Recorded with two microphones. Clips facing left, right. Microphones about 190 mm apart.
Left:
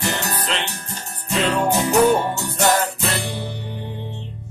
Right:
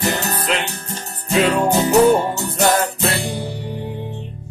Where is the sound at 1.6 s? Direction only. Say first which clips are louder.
Right 1 dB; 30° right (ahead or behind).